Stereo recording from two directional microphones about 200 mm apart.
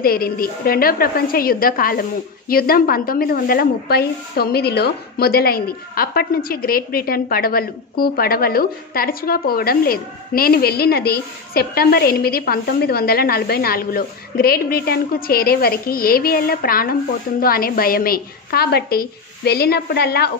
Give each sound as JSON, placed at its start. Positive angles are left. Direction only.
{"t": 0.0, "sound": "a woman's voice", "side_deg": 50}